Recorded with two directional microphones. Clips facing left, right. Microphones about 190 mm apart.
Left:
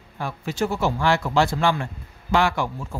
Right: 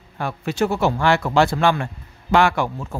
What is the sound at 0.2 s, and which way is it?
Speech, 65° right (ahead or behind).